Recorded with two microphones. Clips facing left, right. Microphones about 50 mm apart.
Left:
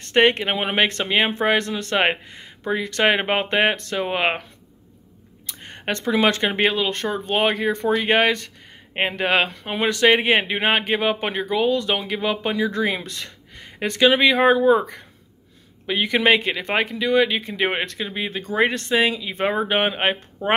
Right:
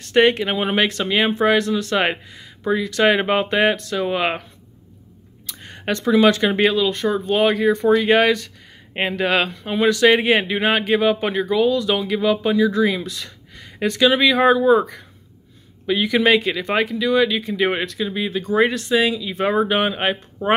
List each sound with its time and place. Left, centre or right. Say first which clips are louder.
0.1 s a man's voice: right 2 dB; left
5.5 s a man's voice: right 2 dB; left
15.9 s a man's voice: right 2 dB; left